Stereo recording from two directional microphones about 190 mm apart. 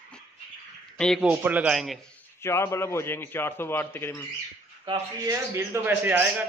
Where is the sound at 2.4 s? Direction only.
15° left (ahead or behind).